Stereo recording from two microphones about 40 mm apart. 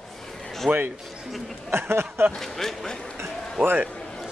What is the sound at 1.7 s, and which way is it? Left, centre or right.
Speech, right.